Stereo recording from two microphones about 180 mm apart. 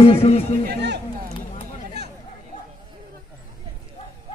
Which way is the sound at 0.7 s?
65° right (ahead or behind).